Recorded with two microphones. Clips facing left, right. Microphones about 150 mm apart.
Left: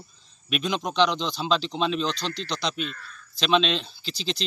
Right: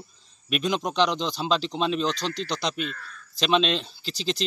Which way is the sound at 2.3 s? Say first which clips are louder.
Right 1 dB; 45° right (ahead or behind).